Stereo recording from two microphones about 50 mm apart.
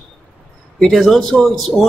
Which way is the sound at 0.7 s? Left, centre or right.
Centre.